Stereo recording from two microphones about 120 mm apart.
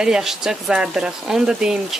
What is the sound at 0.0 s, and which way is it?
Speech, 5° right (ahead or behind).